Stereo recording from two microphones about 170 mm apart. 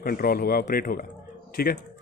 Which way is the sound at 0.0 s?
60° left (ahead or behind).